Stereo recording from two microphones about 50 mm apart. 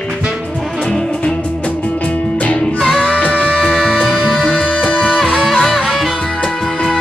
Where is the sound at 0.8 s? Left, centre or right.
Centre.